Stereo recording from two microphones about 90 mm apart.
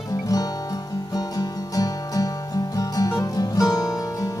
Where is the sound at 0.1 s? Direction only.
45° left (ahead or behind).